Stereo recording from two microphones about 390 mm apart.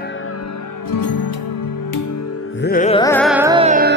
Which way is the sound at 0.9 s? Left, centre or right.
Left.